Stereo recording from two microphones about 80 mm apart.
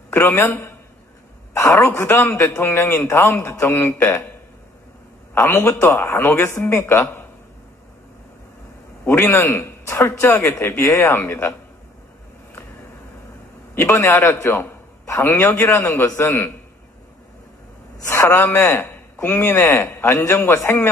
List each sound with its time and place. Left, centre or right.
0.1 s a man's voice: left
1.5 s a man's voice: left
5.4 s a man's voice: left
9.2 s a man's voice: left
13.9 s a man's voice: left
18.0 s a man's voice: left
18.9 s a sound: left
19.4 s a man's voice: left
19.8 s a man's voice: left